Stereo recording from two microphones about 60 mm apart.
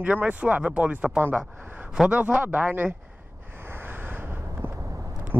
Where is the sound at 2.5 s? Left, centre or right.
Right.